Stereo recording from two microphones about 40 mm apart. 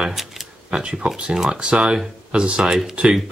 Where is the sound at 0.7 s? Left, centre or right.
Right.